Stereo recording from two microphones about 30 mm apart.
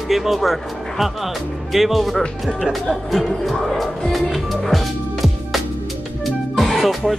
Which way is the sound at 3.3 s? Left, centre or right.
Centre.